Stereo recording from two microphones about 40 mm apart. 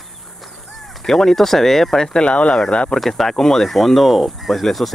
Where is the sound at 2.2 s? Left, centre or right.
Left.